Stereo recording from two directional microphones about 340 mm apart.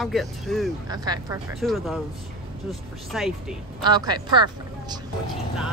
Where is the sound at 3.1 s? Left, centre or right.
Centre.